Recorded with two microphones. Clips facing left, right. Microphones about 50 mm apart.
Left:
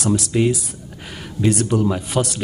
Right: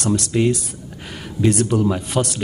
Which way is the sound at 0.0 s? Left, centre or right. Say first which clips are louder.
Even; centre.